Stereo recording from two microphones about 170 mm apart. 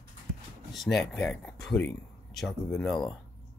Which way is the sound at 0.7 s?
5° left (ahead or behind).